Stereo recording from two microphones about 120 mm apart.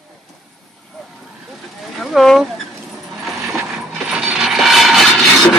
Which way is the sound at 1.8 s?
Centre (ahead or behind).